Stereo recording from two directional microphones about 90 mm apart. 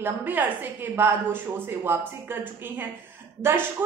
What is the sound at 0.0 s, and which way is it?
A woman's voice, 20° right (ahead or behind).